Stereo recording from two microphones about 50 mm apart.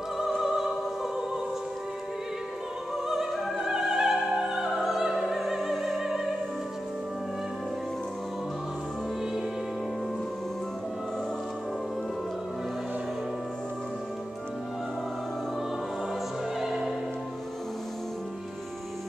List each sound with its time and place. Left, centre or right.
0.4 s opera: centre
3.1 s opera: centre
16.5 s music: centre